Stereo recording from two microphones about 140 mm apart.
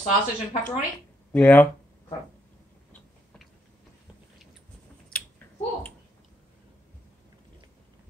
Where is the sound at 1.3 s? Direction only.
10° left (ahead or behind).